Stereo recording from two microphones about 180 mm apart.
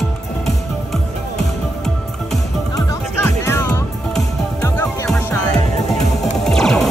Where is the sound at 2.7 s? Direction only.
15° left (ahead or behind).